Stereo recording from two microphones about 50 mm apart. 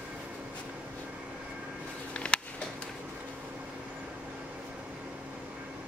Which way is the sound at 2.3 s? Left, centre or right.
Centre.